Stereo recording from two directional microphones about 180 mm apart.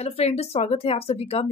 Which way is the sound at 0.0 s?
35° left (ahead or behind).